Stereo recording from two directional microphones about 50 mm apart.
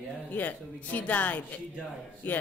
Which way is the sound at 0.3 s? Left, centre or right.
Left.